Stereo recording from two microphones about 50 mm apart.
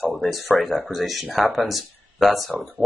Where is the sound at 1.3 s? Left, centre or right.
Centre.